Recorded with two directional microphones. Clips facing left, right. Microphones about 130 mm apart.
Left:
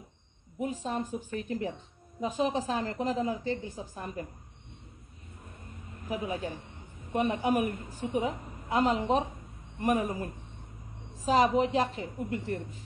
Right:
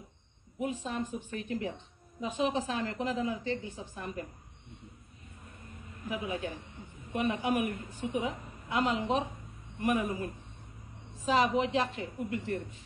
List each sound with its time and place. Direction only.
0.6 s a woman's voice: 40° left (ahead or behind)
6.0 s a woman's voice: 40° left (ahead or behind)